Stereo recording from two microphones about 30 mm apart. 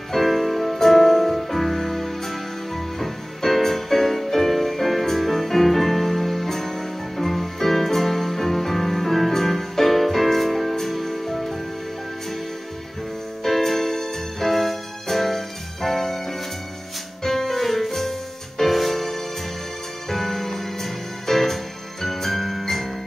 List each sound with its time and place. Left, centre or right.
0.1 s music: centre
13.4 s music: centre